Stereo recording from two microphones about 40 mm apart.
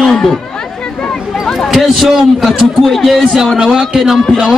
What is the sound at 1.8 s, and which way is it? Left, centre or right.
A man's voice, centre.